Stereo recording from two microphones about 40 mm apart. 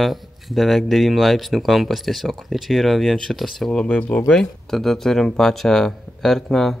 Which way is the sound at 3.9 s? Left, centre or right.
Left.